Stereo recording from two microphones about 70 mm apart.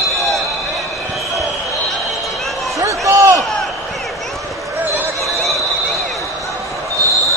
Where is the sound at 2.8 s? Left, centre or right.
Right.